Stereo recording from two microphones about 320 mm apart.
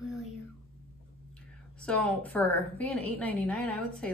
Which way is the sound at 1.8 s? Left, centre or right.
Centre.